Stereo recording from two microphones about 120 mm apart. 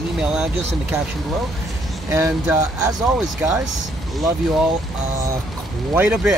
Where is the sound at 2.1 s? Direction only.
25° right (ahead or behind).